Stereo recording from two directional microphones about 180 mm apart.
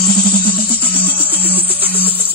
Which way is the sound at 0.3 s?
30° left (ahead or behind).